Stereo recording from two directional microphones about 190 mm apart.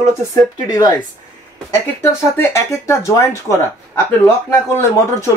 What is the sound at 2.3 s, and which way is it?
Speech, 15° left (ahead or behind).